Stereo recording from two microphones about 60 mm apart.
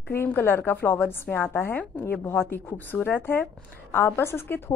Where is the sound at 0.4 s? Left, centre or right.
Left.